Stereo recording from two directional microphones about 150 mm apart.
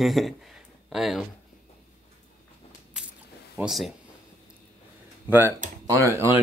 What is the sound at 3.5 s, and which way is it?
Speech, centre (ahead or behind).